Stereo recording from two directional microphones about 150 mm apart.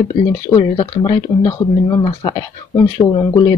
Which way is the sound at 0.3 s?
35° left (ahead or behind).